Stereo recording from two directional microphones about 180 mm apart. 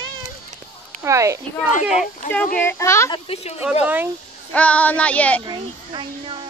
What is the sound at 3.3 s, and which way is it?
Speech, 35° left (ahead or behind).